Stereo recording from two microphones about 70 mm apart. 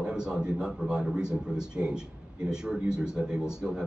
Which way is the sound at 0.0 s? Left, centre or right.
Centre.